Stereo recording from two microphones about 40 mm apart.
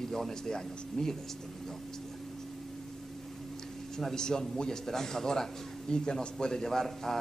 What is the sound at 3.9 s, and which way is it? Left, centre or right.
A man's voice, centre.